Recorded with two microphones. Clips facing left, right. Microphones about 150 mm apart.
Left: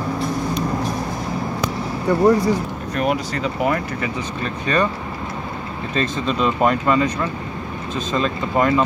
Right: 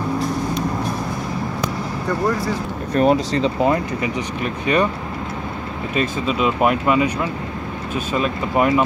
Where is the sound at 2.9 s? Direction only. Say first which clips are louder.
Right 6 dB; 30° right (ahead or behind); by 4.9 s 15° right (ahead or behind).